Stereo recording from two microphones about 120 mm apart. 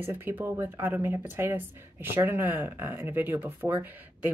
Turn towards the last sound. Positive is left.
turn(degrees=-15)  # may be behind; listen again after turning